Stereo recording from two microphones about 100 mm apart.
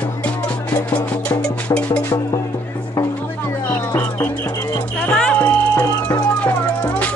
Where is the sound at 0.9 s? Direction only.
10° left (ahead or behind).